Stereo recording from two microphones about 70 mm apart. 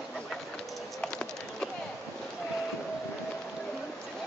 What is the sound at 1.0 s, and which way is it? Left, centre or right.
Wood, centre.